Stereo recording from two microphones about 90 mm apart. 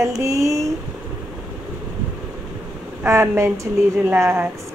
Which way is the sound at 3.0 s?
30° right (ahead or behind).